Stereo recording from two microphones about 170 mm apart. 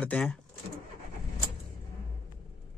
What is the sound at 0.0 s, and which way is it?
Speech, 5° left (ahead or behind).